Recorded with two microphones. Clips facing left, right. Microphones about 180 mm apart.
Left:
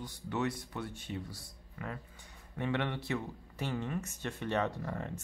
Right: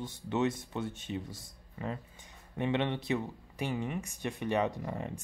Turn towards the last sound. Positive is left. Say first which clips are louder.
# right 1 dB
turn(degrees=-15)  # may be behind; listen again after turning